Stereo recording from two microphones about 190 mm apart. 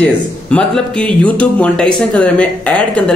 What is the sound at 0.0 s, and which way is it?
Speech, 5° left (ahead or behind).